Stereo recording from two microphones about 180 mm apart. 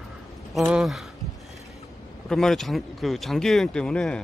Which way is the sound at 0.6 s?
Centre (ahead or behind).